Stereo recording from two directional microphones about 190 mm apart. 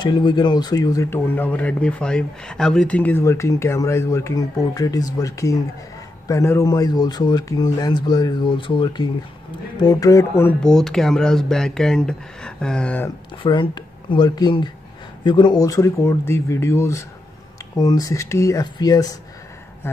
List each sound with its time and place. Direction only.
0.0 s speech: 20° left (ahead or behind)
13.4 s speech: 25° left (ahead or behind)